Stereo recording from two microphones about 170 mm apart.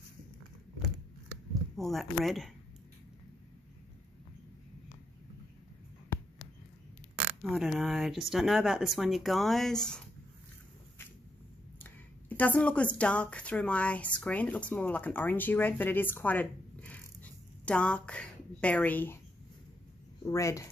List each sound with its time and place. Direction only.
1.5 s speech: centre (ahead or behind)
7.5 s speech: centre (ahead or behind)
11.8 s speech: 10° left (ahead or behind)
20.2 s a woman's voice: 20° left (ahead or behind)